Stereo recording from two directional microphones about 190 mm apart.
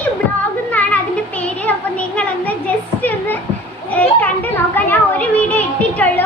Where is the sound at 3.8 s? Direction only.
10° left (ahead or behind).